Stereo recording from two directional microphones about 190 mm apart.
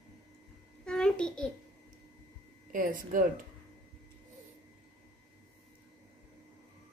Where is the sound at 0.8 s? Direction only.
5° left (ahead or behind).